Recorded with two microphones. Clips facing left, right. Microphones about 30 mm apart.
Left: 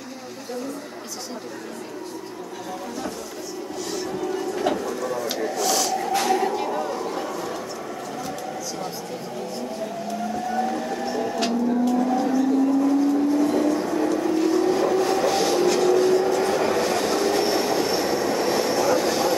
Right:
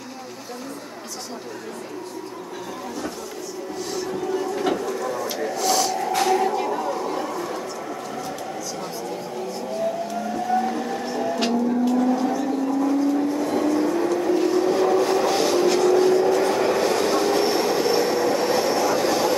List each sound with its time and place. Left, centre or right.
4.3 s bird: centre
5.6 s a sound: right
6.1 s a sound: centre
10.5 s vehicle: centre
13.4 s music: centre
13.7 s vehicle: centre
15.9 s train: centre